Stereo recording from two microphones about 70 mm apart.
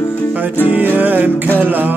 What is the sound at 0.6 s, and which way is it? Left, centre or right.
Music, right.